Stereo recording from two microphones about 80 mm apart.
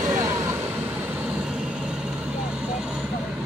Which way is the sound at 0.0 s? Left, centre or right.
Right.